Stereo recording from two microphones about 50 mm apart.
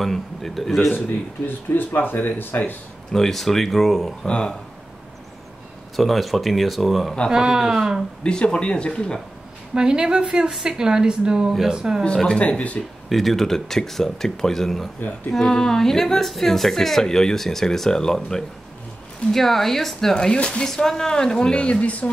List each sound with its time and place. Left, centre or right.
0.0 s speech: centre
1.5 s speech: left
3.1 s speech: centre
4.3 s speech: centre
5.9 s speech: centre
7.2 s a woman's voice: centre
8.2 s speech: centre
9.8 s a woman's voice: centre
12.4 s speech: left
13.1 s speech: centre
20.2 s speech: centre